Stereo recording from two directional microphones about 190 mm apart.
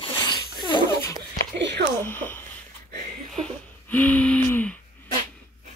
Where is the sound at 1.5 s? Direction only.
70° right (ahead or behind).